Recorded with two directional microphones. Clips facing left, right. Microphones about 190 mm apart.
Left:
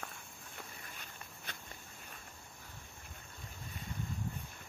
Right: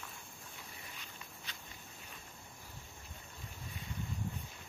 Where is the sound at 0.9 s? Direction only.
50° left (ahead or behind).